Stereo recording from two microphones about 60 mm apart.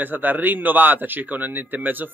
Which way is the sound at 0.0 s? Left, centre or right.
Right.